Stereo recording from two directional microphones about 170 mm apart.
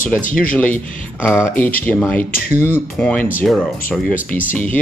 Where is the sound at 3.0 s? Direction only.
10° left (ahead or behind).